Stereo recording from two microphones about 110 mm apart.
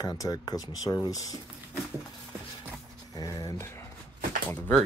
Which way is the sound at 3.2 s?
35° left (ahead or behind).